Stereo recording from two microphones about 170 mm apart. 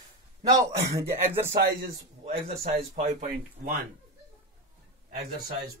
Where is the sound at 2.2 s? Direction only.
45° right (ahead or behind).